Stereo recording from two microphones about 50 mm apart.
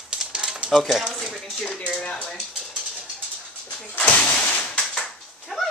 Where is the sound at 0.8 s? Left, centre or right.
Centre.